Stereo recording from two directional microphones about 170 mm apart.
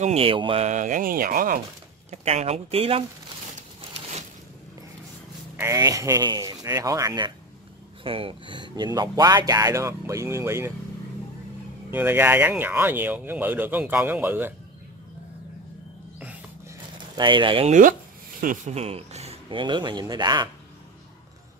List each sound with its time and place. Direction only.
0.0 s speech: 35° right (ahead or behind)
0.7 s speech: 45° right (ahead or behind)
2.0 s speech: 40° right (ahead or behind)
5.6 s speech: 20° right (ahead or behind)
11.9 s speech: 10° right (ahead or behind)
17.1 s speech: 30° right (ahead or behind)
17.6 s speech: 50° right (ahead or behind)
18.8 s speech: 35° right (ahead or behind)